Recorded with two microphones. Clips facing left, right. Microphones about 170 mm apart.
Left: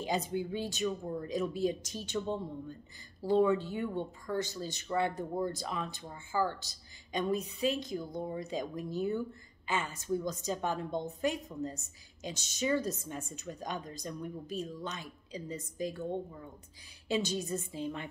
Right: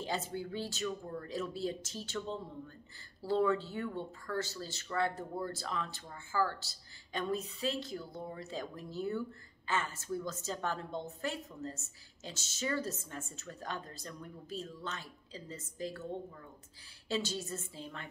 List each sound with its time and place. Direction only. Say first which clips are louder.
0.0 s speech: left 4 dB; 15° left (ahead or behind)